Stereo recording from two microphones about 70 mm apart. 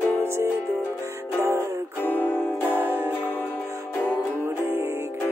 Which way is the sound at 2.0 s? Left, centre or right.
Left.